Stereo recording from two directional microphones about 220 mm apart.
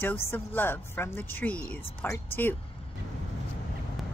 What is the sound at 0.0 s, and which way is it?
Speech, 10° left (ahead or behind).